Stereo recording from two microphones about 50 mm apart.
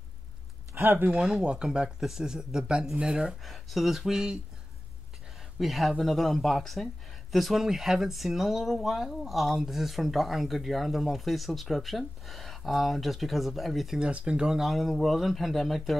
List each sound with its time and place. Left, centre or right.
0.7 s speech: right
1.1 s speech: centre
3.4 s speech: centre
5.6 s speech: centre
13.9 s speech: right
14.5 s speech: centre